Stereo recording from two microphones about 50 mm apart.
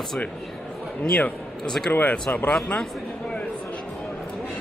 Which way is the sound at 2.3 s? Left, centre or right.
Left.